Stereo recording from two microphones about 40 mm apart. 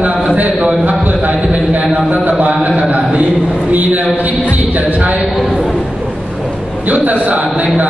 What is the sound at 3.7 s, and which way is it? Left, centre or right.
A man's voice, right.